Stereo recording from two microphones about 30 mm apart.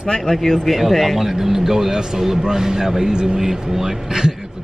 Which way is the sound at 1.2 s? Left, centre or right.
Centre.